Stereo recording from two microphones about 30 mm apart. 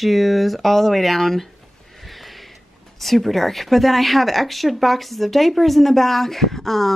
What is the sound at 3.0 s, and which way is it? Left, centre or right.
Speech, centre.